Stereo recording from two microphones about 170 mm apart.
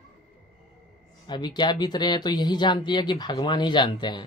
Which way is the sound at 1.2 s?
25° left (ahead or behind).